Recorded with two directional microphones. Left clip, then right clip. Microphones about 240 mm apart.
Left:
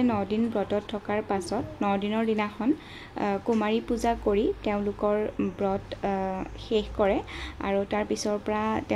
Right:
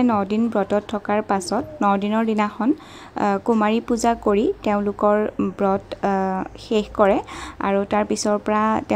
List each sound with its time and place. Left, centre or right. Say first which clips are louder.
0.0 s a woman's voice: right 7 dB; right